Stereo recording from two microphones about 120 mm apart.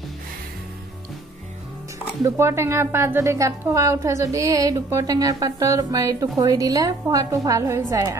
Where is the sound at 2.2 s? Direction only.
25° right (ahead or behind).